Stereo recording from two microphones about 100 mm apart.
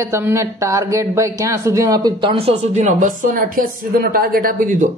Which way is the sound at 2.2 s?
75° right (ahead or behind).